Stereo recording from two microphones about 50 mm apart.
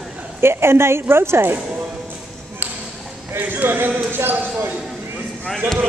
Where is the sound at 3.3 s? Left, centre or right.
Right.